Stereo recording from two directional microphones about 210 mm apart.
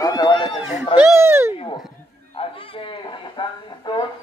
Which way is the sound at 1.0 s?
10° right (ahead or behind).